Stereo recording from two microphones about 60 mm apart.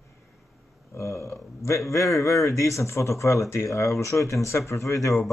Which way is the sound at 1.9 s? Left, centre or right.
Left.